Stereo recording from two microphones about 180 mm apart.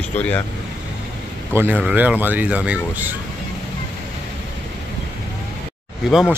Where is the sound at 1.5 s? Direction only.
10° right (ahead or behind).